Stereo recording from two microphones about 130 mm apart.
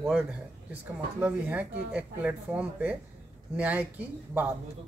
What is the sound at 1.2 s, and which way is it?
A man's voice, 10° right (ahead or behind).